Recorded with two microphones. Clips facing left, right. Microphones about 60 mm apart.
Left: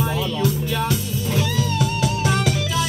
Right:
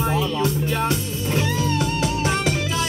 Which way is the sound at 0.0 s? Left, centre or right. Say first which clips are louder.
Right 1 dB; right.